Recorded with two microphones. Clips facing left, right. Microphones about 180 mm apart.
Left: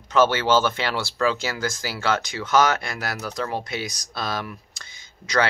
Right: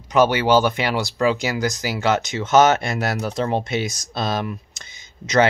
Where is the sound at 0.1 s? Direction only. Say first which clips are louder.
Right 3 dB; 15° right (ahead or behind).